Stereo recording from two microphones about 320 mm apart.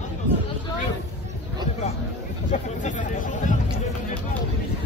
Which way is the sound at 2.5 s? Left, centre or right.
Left.